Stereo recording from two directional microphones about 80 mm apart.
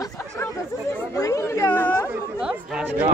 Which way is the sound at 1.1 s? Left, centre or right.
Left.